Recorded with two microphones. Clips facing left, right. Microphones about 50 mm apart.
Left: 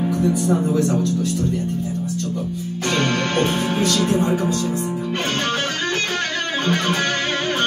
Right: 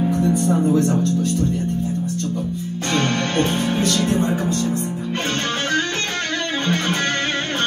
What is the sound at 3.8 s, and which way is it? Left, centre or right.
Speech, right.